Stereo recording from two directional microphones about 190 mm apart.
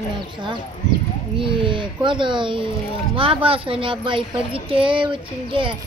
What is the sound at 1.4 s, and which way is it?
Speech, 25° right (ahead or behind).